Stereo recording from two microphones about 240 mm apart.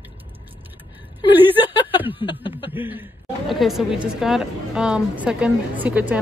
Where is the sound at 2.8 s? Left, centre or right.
Centre.